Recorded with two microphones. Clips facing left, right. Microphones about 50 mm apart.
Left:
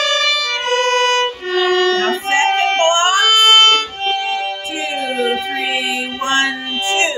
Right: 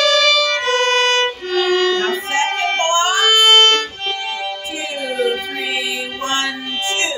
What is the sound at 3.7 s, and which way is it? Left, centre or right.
Music, left.